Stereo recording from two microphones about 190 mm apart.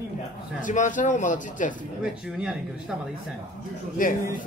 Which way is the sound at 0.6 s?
45° left (ahead or behind).